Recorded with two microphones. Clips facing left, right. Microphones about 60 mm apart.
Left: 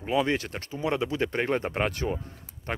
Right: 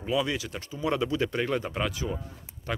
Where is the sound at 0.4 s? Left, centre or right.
Left.